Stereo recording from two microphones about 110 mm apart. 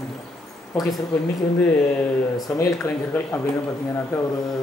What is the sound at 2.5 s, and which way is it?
Speech, 10° left (ahead or behind).